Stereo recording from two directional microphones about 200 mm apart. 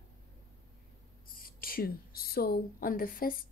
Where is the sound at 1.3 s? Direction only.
45° left (ahead or behind).